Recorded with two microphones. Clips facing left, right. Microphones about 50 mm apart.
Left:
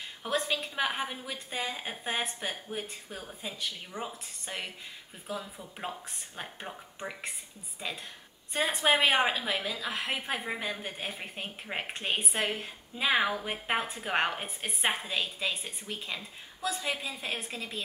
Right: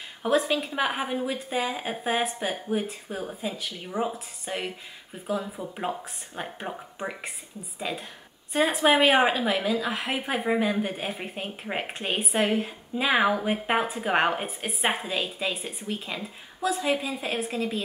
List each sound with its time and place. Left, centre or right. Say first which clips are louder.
0.3 s a woman's voice: right 7 dB; centre
4.6 s a woman's voice: right 6 dB; centre
8.5 s a woman's voice: right 6 dB; centre